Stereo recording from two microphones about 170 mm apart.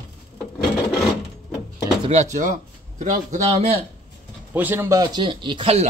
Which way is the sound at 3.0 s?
45° right (ahead or behind).